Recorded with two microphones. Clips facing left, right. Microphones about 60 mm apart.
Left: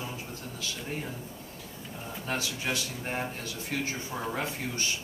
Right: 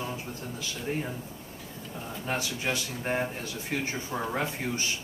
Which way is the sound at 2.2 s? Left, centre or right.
Centre.